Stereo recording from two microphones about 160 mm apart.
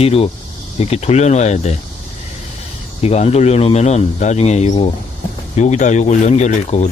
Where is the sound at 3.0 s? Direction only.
40° left (ahead or behind).